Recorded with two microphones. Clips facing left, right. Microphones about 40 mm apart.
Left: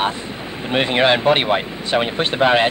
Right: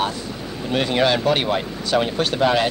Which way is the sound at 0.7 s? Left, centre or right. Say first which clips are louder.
Left 3 dB; left.